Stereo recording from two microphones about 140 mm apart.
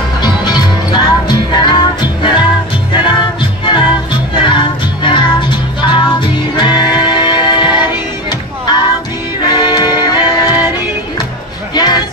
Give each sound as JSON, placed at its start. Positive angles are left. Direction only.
{"t": 0.2, "sound": "music", "side_deg": 30}
{"t": 9.4, "sound": "music", "side_deg": 30}
{"t": 11.7, "sound": "music", "side_deg": 30}